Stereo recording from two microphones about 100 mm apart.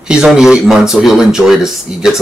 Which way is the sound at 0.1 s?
5° right (ahead or behind).